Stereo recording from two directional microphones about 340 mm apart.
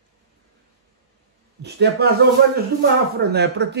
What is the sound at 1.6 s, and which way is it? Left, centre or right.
Speech, right.